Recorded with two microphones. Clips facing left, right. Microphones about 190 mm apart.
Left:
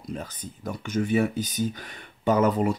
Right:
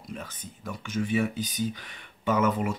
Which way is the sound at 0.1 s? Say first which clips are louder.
Left 5 dB; 40° left (ahead or behind).